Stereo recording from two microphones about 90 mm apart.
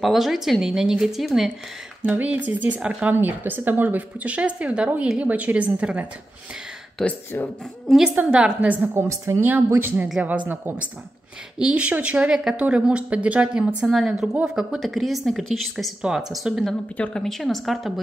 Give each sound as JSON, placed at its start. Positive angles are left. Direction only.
{"t": 0.0, "sound": "a woman's voice", "side_deg": 0}
{"t": 2.0, "sound": "speech", "side_deg": -15}
{"t": 7.0, "sound": "a woman's voice", "side_deg": 5}
{"t": 8.1, "sound": "speech", "side_deg": -20}
{"t": 8.9, "sound": "a woman's voice", "side_deg": -30}
{"t": 9.4, "sound": "a woman's voice", "side_deg": -20}
{"t": 16.9, "sound": "a woman's voice", "side_deg": 10}